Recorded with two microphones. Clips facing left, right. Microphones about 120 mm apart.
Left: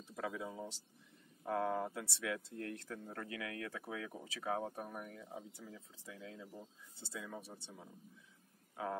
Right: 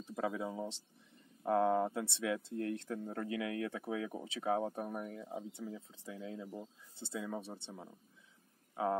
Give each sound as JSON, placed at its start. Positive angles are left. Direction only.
{"t": 0.1, "sound": "speech", "side_deg": -30}
{"t": 8.8, "sound": "speech", "side_deg": -25}